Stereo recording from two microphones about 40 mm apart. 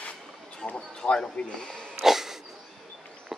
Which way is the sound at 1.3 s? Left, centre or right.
Left.